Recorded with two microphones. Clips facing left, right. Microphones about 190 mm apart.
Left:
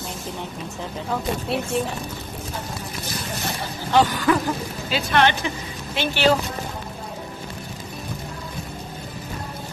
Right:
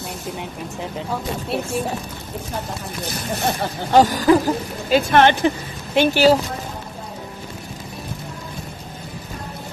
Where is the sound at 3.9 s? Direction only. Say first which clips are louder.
Right 5 dB; 40° right (ahead or behind).